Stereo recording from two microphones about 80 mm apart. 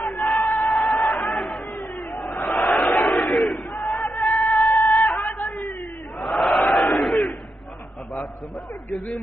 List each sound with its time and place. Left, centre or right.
0.4 s a sound: left
0.7 s a sound: centre
2.1 s crowd: centre
2.4 s battle cry: centre
4.1 s music: left
4.6 s chicken: centre
6.1 s crowd: centre
8.9 s speech: centre